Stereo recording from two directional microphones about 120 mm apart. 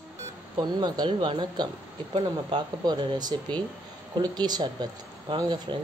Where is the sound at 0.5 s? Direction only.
40° right (ahead or behind).